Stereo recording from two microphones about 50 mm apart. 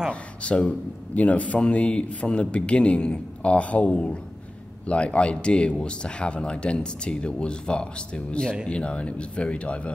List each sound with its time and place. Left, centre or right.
0.1 s a man's voice: left